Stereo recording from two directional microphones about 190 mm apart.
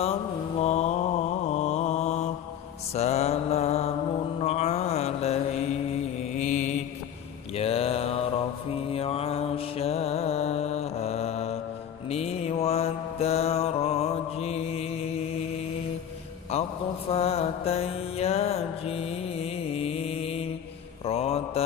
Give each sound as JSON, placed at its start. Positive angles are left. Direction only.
{"t": 0.0, "sound": "mantra", "side_deg": 30}
{"t": 16.5, "sound": "mantra", "side_deg": 35}